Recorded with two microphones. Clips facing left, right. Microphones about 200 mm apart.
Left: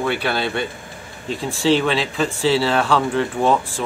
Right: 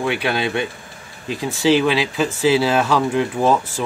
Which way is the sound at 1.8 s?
5° right (ahead or behind).